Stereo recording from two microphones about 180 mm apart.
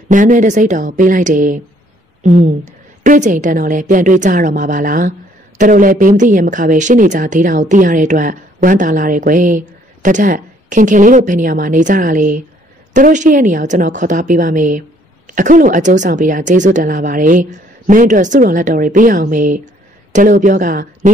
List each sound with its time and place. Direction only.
0.1 s speech: 45° right (ahead or behind)